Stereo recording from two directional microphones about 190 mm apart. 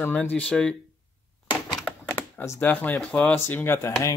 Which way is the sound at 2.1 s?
10° left (ahead or behind).